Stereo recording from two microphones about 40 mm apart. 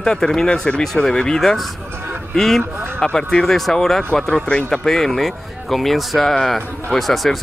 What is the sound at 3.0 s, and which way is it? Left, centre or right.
Speech, centre.